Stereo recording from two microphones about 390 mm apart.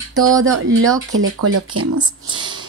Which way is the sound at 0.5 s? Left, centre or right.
Right.